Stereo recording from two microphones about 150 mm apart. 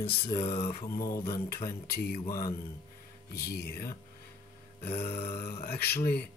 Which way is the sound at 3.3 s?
90° left.